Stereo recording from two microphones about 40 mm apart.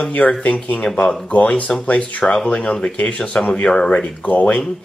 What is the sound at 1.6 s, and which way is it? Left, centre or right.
Speech, left.